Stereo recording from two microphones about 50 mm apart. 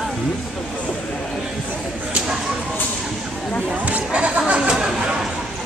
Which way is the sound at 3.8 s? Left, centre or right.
Right.